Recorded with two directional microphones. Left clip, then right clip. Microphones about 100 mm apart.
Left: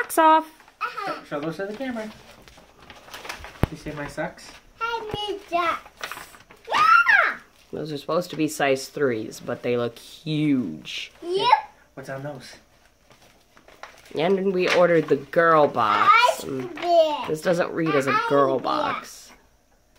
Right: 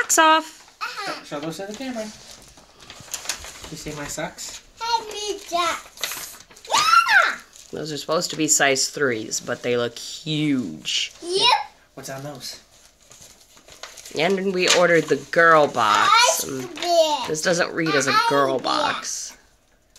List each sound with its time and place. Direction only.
0.0 s a sound: 15° left (ahead or behind)
3.8 s speech: 60° right (ahead or behind)
4.7 s a child's voice: centre (ahead or behind)
11.2 s babbling: centre (ahead or behind)
14.1 s speech: 15° left (ahead or behind)
16.3 s a sound: 5° right (ahead or behind)
17.3 s speech: 15° left (ahead or behind)